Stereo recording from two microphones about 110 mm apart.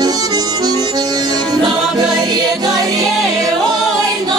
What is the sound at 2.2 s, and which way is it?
Music, 35° right (ahead or behind).